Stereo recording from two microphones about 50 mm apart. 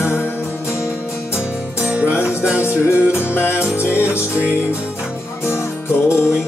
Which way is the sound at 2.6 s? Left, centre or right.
Left.